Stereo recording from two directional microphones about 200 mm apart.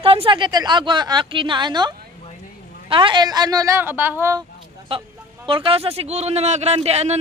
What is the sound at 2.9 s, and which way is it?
A woman's voice, 25° right (ahead or behind).